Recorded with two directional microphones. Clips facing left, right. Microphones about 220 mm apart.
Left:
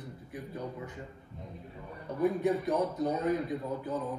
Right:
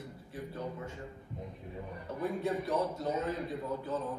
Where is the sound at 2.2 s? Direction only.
15° left (ahead or behind).